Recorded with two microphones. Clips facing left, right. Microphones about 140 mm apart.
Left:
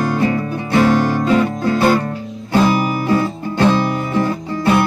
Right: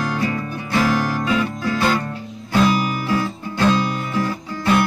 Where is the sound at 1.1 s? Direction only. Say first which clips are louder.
Left 6 dB; 50° left (ahead or behind).